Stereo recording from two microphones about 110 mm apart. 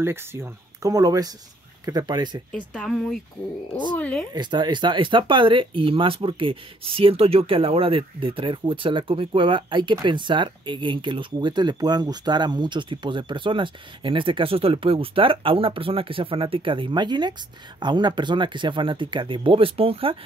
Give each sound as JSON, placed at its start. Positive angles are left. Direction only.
{"t": 0.0, "sound": "speech", "side_deg": -20}
{"t": 2.5, "sound": "speech", "side_deg": 5}
{"t": 4.3, "sound": "speech", "side_deg": -40}